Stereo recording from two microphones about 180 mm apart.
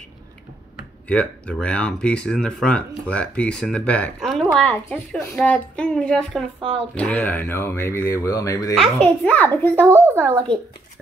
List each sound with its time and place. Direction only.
1.0 s speech: 5° left (ahead or behind)
6.6 s speech: 30° right (ahead or behind)
7.0 s speech: 5° left (ahead or behind)
8.7 s speech: 5° left (ahead or behind)
9.9 s a woman's voice: 15° right (ahead or behind)